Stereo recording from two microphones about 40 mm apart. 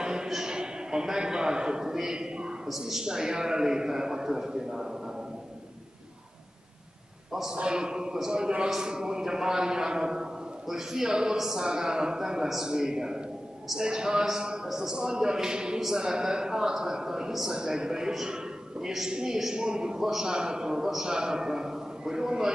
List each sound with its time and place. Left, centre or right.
0.0 s a sound: centre
0.3 s a man's voice: centre
7.6 s a man's voice: right